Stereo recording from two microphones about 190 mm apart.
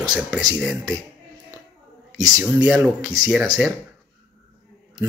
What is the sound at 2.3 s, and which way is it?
Speech, 5° right (ahead or behind).